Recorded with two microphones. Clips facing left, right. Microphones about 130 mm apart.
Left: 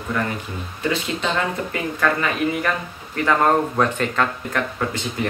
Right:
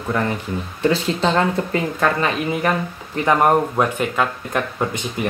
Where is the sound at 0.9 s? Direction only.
30° right (ahead or behind); by 4.6 s 10° right (ahead or behind).